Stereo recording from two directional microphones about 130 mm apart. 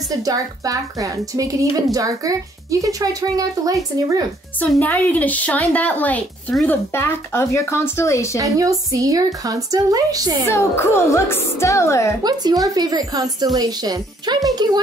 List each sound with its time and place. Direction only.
0.1 s a woman's voice: 30° right (ahead or behind)
4.6 s a woman's voice: 15° left (ahead or behind)
8.4 s a woman's voice: 25° right (ahead or behind)
10.5 s speech: 20° left (ahead or behind)
12.2 s speech: 30° right (ahead or behind)